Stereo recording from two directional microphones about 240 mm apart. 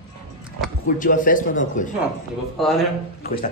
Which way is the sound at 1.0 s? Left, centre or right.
Left.